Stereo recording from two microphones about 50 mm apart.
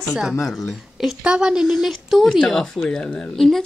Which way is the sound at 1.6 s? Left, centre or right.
Centre.